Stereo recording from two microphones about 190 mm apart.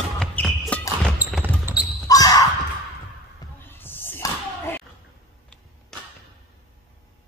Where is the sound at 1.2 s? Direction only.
10° right (ahead or behind).